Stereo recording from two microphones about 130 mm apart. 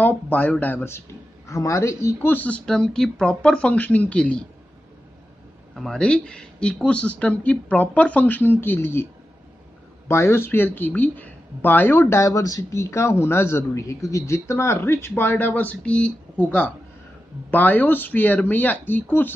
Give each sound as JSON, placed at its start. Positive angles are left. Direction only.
{"t": 0.0, "sound": "speech", "side_deg": 15}
{"t": 5.8, "sound": "speech", "side_deg": 5}